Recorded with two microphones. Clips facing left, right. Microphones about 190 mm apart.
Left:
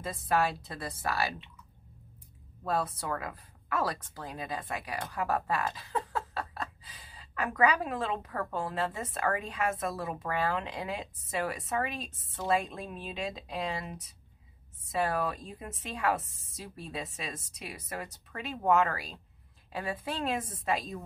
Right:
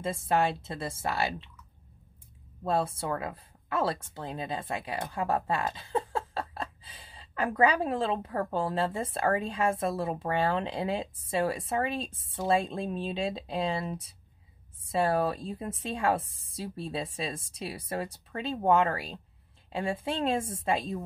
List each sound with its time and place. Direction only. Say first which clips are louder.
0.0 s speech: right 2 dB; 25° right (ahead or behind)
2.6 s a woman's voice: right 3 dB; 25° right (ahead or behind)